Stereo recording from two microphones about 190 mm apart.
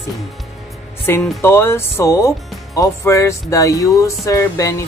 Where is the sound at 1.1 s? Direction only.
10° left (ahead or behind).